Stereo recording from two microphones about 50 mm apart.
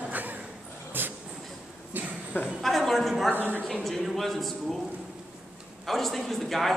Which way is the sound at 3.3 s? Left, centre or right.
Right.